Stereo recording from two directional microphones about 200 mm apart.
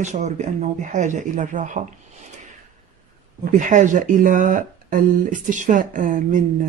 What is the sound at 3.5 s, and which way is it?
Speech, 40° right (ahead or behind).